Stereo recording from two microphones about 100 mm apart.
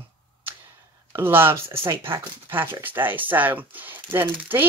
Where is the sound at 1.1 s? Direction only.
25° right (ahead or behind).